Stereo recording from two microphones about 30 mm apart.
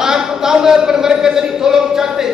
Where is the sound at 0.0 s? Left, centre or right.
Centre.